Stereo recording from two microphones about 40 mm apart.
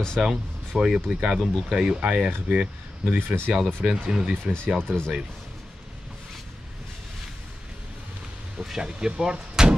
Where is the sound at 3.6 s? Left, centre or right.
Centre.